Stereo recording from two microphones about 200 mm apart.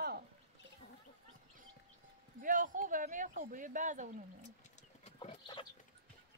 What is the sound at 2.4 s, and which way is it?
Speech, 40° right (ahead or behind).